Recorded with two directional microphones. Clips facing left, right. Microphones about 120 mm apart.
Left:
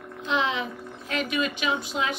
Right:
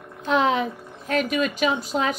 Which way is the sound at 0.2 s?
45° right (ahead or behind).